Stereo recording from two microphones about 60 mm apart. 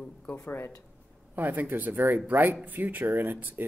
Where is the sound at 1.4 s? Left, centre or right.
Right.